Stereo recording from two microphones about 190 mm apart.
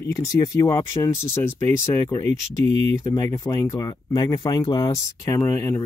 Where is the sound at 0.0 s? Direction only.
15° left (ahead or behind).